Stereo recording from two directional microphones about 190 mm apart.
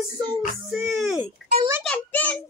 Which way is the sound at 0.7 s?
Centre (ahead or behind).